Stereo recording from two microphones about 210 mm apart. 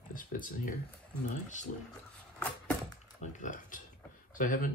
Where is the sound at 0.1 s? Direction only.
40° left (ahead or behind).